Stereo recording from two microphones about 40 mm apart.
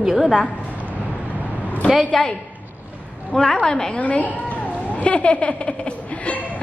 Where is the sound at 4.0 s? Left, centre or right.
Left.